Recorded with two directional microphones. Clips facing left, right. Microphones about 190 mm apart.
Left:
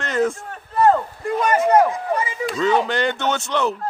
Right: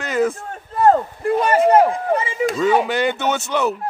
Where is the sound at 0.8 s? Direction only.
35° right (ahead or behind).